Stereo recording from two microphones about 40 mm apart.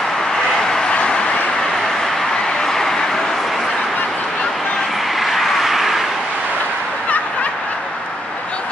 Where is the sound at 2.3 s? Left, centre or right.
Centre.